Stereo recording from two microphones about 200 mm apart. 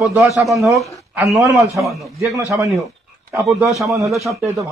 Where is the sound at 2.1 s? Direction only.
15° right (ahead or behind).